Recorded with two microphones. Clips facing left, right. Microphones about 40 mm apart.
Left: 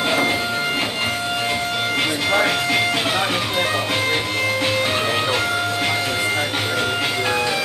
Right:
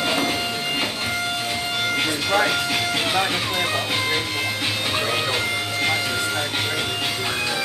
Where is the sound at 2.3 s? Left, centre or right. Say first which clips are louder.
Left 1 dB; centre.